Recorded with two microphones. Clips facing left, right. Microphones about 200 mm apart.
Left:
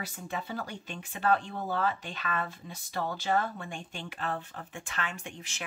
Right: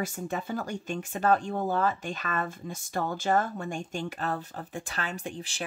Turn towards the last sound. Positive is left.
turn(degrees=-35)  # may be behind; listen again after turning